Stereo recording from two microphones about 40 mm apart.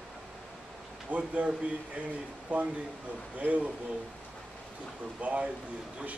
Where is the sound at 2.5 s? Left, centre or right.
Right.